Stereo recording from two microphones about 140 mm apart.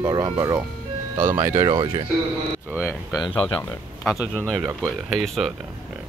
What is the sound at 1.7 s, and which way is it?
Speech, 35° right (ahead or behind).